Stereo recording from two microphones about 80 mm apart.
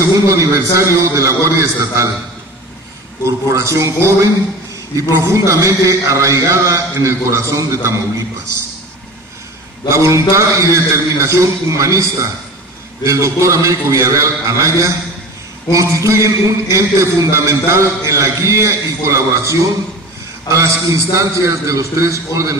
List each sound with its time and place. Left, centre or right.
0.0 s a man's voice: right
3.3 s a man's voice: right
9.8 s a man's voice: right